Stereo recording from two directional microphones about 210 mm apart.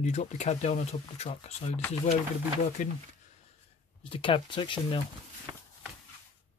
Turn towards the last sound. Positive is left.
turn(degrees=-25)  # may be behind; listen again after turning